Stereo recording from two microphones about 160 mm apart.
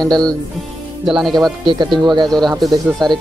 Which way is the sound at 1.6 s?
30° right (ahead or behind).